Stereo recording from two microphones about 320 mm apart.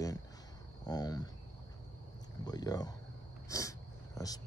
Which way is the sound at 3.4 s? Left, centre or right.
Centre.